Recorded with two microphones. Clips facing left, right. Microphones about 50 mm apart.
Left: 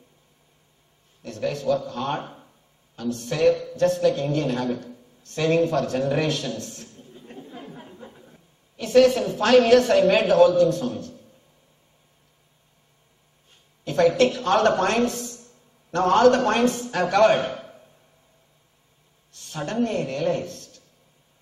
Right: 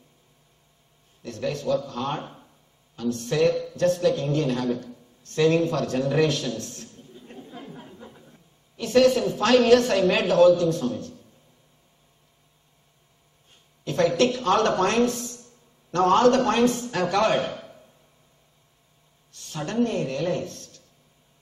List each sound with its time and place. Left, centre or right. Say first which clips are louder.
1.5 s a woman's voice: left 1 dB; left
7.4 s chatter: even; centre
8.3 s a sound: left 1 dB; left
9.0 s a woman's voice: left 1 dB; left
13.8 s speech: left 2 dB; left
19.4 s a woman's voice: even; left